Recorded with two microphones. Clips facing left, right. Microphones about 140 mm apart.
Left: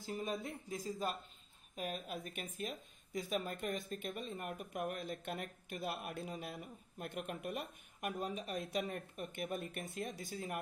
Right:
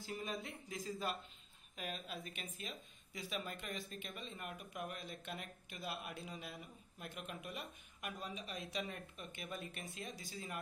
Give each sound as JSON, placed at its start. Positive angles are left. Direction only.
{"t": 0.0, "sound": "speech", "side_deg": 45}